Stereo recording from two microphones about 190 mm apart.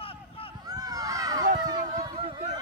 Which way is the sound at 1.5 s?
20° right (ahead or behind).